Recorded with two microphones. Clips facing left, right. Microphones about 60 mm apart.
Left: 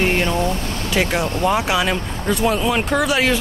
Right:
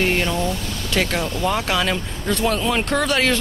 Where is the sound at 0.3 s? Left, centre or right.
Left.